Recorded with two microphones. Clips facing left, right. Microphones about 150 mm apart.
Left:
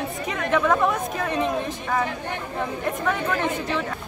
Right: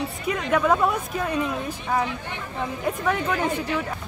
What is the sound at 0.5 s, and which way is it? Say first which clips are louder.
Speech: even; 5° right (ahead or behind).